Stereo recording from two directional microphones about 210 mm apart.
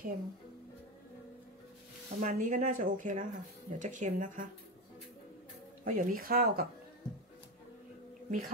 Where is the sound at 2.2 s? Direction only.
40° right (ahead or behind).